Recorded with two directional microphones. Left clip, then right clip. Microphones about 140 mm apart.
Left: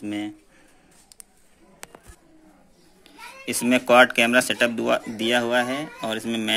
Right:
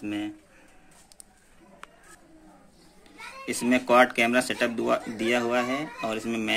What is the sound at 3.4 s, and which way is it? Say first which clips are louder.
Speech: left 4 dB; 45° left (ahead or behind).